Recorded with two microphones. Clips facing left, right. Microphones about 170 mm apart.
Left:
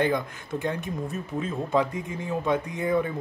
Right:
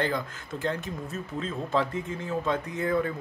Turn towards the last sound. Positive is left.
turn(degrees=15)  # may be behind; listen again after turning